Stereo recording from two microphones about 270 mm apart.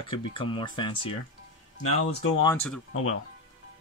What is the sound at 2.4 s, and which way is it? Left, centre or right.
Speech, centre.